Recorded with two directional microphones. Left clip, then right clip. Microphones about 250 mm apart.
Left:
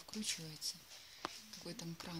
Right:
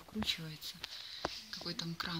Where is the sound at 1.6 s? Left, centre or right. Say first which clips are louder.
Right 9 dB; centre.